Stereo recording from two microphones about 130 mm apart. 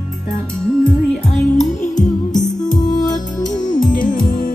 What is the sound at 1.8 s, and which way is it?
Music, 75° left (ahead or behind).